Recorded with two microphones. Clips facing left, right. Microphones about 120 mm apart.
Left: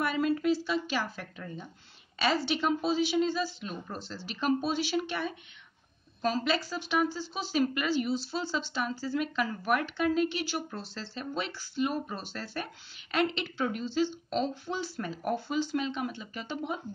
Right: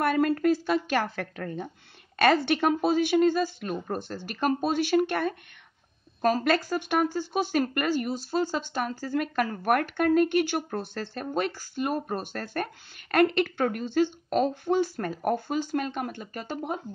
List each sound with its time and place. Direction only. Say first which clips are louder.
0.0 s a woman's voice: right 5 dB; 55° right (ahead or behind)
2.1 s speech: right 7 dB; 55° right (ahead or behind)